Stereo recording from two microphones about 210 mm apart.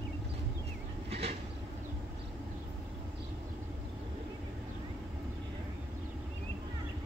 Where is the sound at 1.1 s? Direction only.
30° right (ahead or behind).